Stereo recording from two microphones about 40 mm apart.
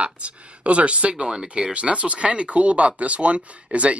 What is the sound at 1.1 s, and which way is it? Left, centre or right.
Speech, right.